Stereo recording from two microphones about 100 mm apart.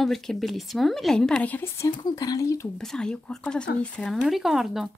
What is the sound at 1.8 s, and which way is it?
Speech, 40° left (ahead or behind).